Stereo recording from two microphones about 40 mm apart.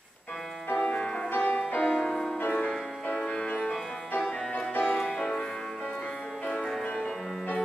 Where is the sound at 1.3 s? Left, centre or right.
Left.